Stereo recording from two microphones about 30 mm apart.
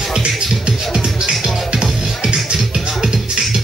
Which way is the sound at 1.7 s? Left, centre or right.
Right.